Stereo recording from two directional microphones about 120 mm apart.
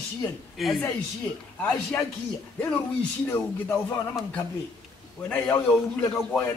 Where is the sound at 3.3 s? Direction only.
20° left (ahead or behind).